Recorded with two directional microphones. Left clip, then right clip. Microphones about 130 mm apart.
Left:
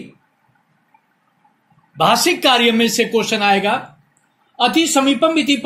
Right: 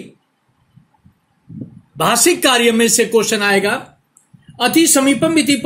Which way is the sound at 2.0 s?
40° right (ahead or behind).